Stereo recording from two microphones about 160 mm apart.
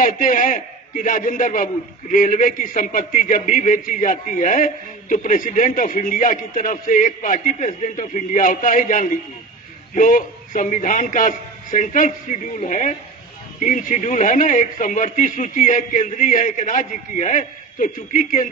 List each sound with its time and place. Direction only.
0.0 s a man's voice: 55° left (ahead or behind)